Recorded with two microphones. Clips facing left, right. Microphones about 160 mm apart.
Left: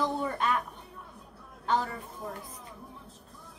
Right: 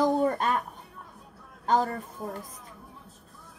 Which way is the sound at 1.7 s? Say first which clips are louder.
Right 4 dB; 45° right (ahead or behind).